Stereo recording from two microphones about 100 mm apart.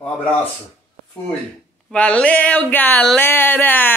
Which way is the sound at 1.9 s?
15° left (ahead or behind).